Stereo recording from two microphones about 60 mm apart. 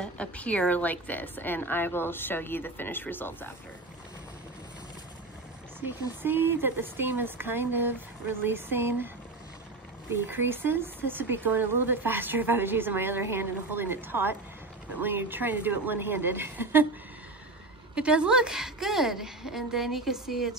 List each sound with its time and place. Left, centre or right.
0.0 s a woman's voice: left
5.8 s speech: right
10.2 s speech: right
17.9 s a woman's voice: centre